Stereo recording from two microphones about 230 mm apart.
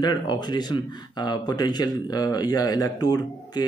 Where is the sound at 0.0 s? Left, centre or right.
Centre.